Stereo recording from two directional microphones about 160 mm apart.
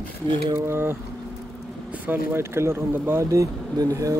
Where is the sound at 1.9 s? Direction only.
10° right (ahead or behind).